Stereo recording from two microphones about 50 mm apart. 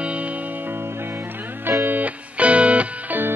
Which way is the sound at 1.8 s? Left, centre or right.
Right.